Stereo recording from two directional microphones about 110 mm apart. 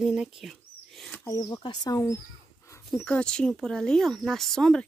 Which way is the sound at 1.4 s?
40° left (ahead or behind).